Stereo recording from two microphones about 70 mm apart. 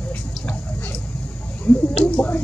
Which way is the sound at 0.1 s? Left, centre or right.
Left.